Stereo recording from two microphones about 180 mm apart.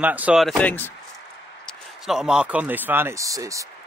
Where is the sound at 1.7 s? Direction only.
Centre (ahead or behind).